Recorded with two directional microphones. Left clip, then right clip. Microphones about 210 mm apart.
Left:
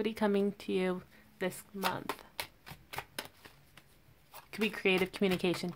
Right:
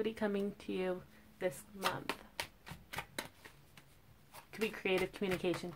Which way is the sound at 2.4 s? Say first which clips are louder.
Left 1 dB; 15° left (ahead or behind).